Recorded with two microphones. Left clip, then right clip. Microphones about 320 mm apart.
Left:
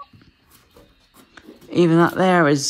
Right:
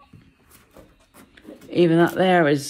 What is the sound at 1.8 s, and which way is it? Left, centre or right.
Speech, left.